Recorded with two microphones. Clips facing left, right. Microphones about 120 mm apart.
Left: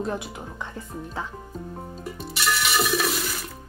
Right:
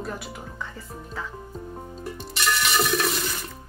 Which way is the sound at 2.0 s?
5° left (ahead or behind).